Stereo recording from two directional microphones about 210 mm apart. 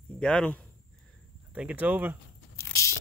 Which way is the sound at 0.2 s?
5° left (ahead or behind).